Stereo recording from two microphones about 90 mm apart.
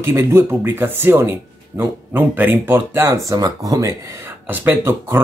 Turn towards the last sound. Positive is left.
turn(degrees=-30)  # may be behind; listen again after turning